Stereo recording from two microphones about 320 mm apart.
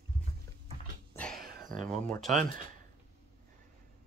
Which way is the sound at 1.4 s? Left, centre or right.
Right.